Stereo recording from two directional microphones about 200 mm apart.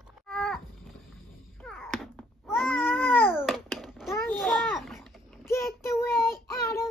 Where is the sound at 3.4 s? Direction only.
Centre (ahead or behind).